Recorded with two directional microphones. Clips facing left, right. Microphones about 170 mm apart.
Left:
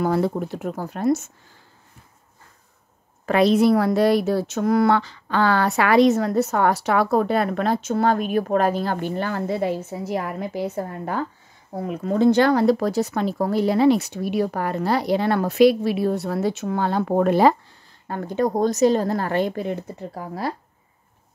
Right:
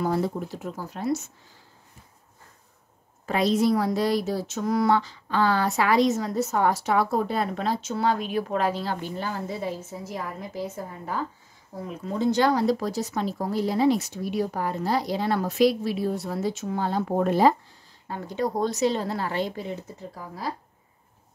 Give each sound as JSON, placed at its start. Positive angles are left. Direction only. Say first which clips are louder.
{"t": 0.0, "sound": "a woman's voice", "louder": "left 4 dB", "side_deg": 65}
{"t": 3.3, "sound": "a woman's voice", "louder": "left 6 dB", "side_deg": 65}
{"t": 18.0, "sound": "speech", "louder": "left 5 dB", "side_deg": 55}